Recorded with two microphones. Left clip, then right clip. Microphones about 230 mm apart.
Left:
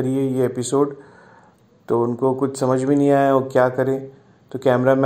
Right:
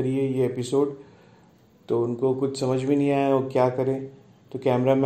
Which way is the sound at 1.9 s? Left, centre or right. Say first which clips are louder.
Left 5 dB; left.